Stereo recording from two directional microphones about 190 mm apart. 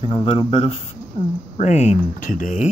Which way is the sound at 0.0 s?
30° left (ahead or behind).